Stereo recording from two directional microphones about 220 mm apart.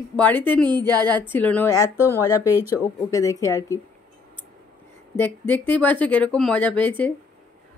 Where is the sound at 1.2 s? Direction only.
10° left (ahead or behind).